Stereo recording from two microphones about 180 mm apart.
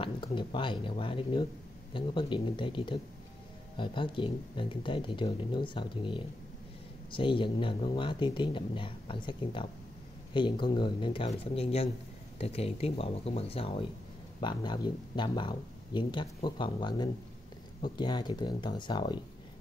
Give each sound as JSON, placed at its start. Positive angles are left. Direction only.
{"t": 0.0, "sound": "speech", "side_deg": 25}